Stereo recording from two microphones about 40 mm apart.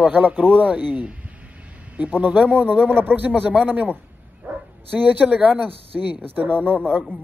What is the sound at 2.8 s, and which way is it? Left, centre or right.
Speech, right.